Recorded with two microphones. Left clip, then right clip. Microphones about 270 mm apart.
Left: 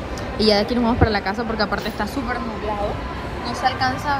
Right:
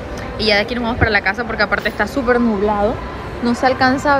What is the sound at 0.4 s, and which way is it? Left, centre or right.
Speech, centre.